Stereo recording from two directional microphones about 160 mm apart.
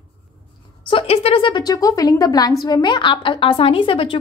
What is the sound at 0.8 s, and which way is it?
A woman's voice, 35° left (ahead or behind).